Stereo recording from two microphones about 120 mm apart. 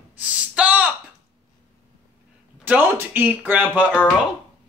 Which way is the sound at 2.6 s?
15° right (ahead or behind).